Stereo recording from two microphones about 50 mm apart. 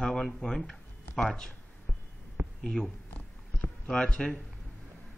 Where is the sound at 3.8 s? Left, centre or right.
Centre.